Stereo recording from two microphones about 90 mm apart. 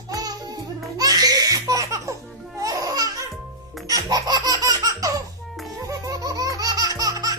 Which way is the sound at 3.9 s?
45° right (ahead or behind).